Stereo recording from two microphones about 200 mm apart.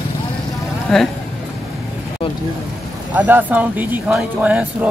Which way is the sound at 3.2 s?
10° right (ahead or behind).